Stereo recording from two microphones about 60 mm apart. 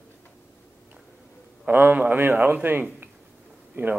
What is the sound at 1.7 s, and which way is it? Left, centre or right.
A man's voice, right.